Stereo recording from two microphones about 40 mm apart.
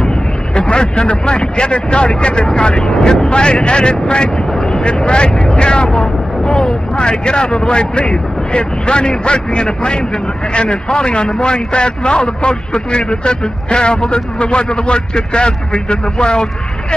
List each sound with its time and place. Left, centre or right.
0.0 s speech: left